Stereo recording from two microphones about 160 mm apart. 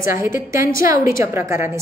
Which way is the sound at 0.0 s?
15° right (ahead or behind).